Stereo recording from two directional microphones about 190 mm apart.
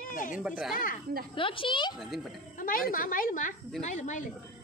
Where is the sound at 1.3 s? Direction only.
25° left (ahead or behind).